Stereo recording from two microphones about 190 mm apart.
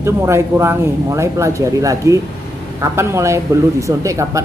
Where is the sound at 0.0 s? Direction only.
15° right (ahead or behind).